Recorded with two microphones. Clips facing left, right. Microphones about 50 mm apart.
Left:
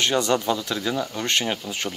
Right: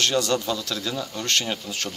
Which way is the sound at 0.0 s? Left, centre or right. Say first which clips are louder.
Left 2 dB; left.